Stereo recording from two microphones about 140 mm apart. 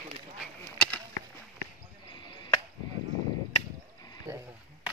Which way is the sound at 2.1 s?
35° left (ahead or behind).